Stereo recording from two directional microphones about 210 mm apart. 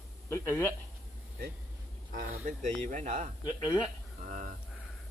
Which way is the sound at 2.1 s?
40° right (ahead or behind).